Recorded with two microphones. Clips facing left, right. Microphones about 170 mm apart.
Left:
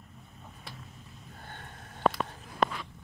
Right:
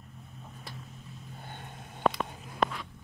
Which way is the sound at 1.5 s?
15° right (ahead or behind).